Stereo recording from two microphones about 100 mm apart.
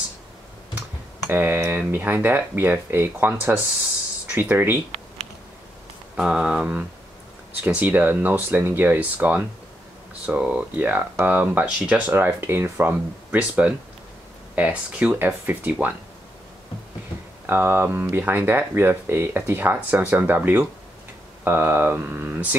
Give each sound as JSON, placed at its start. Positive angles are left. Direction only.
{"t": 1.3, "sound": "speech", "side_deg": -20}
{"t": 6.1, "sound": "speech", "side_deg": -10}
{"t": 17.5, "sound": "speech", "side_deg": -20}